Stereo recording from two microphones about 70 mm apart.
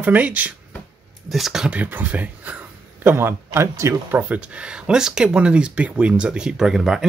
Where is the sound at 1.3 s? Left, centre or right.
Centre.